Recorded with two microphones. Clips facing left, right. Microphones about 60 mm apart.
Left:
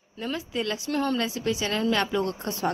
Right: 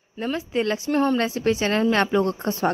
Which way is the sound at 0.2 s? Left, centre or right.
Right.